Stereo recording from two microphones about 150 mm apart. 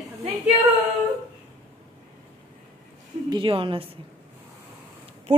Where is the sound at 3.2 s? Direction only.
35° right (ahead or behind).